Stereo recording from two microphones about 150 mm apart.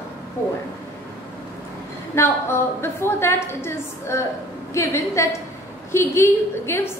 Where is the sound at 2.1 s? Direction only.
15° left (ahead or behind).